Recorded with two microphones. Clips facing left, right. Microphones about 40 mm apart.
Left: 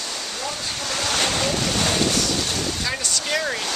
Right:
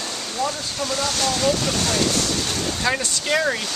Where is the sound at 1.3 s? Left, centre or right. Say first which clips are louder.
Right 2 dB; left.